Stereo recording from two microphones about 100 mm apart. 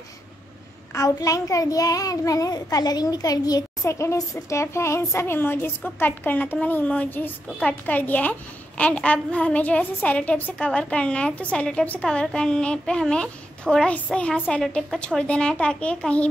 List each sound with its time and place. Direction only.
0.9 s a child's voice: 35° left (ahead or behind); by 16.3 s 10° left (ahead or behind)